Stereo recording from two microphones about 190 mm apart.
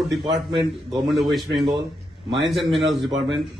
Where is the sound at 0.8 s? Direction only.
Centre (ahead or behind).